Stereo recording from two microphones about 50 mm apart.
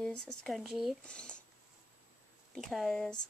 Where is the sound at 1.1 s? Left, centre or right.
Centre.